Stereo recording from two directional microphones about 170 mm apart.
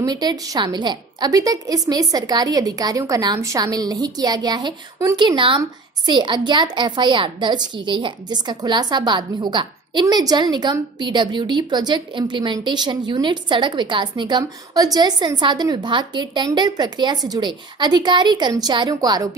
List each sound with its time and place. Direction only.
0.0 s a woman's voice: 25° right (ahead or behind)